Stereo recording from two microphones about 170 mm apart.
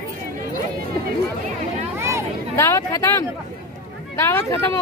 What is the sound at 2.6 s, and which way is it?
Speech, 15° left (ahead or behind).